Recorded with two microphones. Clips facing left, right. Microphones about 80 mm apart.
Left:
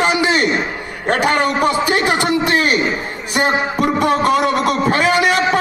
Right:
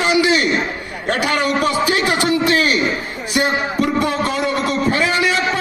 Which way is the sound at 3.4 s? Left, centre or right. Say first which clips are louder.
Left 1 dB; left.